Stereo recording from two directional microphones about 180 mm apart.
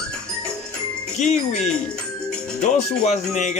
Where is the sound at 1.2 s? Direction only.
40° left (ahead or behind).